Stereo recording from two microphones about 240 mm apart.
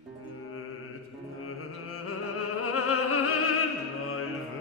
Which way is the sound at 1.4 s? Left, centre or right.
Left.